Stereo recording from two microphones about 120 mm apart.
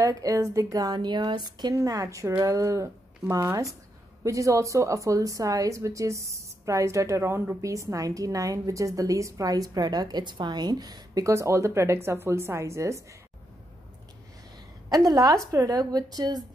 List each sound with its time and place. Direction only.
0.0 s a woman's voice: 30° right (ahead or behind)
14.9 s speech: 30° right (ahead or behind)